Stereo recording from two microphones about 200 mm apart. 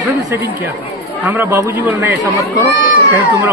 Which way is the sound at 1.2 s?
10° right (ahead or behind).